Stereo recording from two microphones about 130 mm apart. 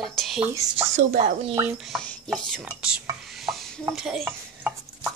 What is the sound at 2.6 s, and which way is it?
Dishes, 5° right (ahead or behind).